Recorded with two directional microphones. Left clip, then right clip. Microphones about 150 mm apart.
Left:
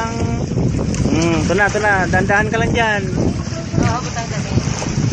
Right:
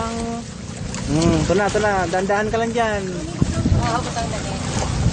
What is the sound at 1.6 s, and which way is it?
Speech, 10° left (ahead or behind).